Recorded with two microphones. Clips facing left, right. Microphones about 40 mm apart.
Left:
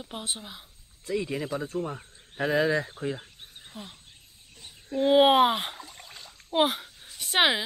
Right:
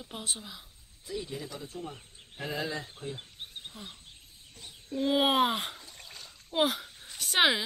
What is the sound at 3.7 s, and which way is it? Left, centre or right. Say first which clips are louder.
Speech: left 7 dB; left.